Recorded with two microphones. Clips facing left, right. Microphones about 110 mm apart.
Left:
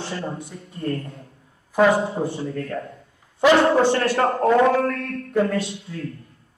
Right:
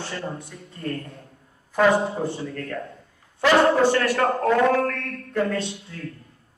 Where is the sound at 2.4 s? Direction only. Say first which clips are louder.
Left 3 dB; 30° left (ahead or behind).